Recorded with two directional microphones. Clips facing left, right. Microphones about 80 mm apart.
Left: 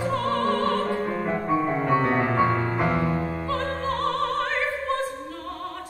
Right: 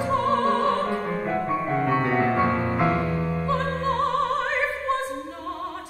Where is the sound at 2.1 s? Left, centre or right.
Centre.